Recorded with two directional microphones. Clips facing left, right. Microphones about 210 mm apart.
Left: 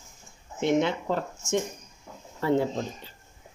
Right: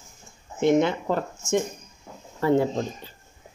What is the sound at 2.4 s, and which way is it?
Speech, 50° right (ahead or behind).